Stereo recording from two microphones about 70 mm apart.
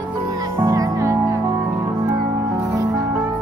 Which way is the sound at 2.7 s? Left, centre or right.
Right.